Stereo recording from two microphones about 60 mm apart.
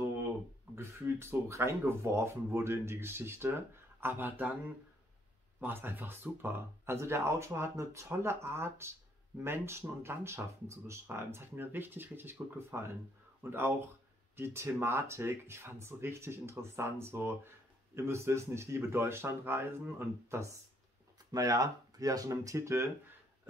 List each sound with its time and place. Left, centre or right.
0.7 s speech: right
5.6 s speech: right
7.0 s speech: right
21.3 s speech: right
22.4 s speech: right